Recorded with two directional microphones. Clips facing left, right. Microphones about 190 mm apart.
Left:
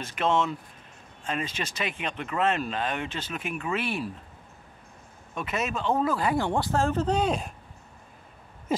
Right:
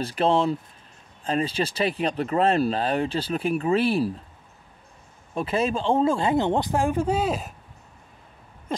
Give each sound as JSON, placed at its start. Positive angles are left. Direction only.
{"t": 0.0, "sound": "speech", "side_deg": -35}
{"t": 5.3, "sound": "speech", "side_deg": -30}